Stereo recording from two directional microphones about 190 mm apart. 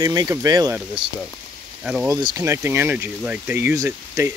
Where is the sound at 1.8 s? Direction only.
5° right (ahead or behind).